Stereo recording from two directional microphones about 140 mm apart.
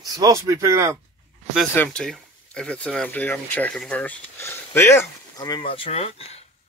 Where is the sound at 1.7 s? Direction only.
10° left (ahead or behind).